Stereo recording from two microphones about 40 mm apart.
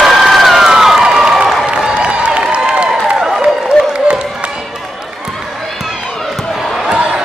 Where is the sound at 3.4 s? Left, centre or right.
Right.